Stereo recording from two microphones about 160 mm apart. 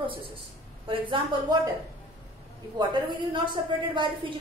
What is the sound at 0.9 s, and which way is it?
Speech, 30° right (ahead or behind).